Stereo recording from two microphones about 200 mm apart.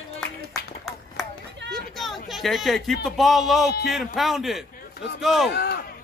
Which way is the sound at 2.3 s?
Centre (ahead or behind).